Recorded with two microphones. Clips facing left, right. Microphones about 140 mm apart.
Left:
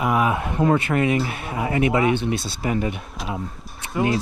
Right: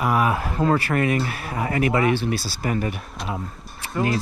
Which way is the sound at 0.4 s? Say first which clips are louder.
Left 1 dB; 20° left (ahead or behind).